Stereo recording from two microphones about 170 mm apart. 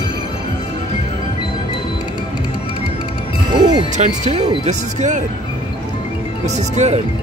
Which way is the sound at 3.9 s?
45° right (ahead or behind).